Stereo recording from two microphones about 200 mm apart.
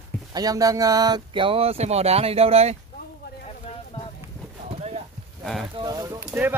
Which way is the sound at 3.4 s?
30° left (ahead or behind).